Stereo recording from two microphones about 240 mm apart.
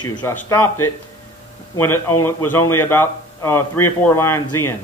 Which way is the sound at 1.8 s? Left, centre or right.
Centre.